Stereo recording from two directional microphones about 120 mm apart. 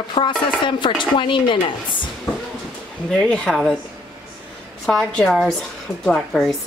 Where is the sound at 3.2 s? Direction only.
5° left (ahead or behind).